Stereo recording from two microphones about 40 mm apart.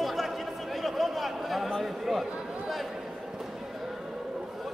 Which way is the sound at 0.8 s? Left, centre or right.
Centre.